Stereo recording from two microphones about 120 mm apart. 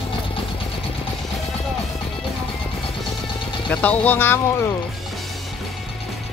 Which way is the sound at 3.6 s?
15° left (ahead or behind).